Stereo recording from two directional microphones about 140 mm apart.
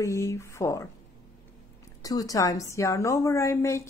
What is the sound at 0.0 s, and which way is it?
Speech, 20° left (ahead or behind).